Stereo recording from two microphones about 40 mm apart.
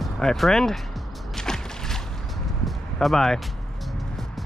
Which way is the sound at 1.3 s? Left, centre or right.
Centre.